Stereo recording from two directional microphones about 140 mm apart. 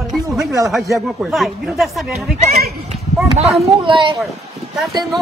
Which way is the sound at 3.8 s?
35° right (ahead or behind).